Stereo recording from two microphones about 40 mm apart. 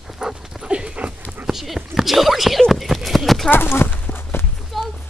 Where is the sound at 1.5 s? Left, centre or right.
Centre.